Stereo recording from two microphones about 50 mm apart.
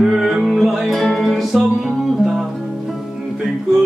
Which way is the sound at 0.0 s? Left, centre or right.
Centre.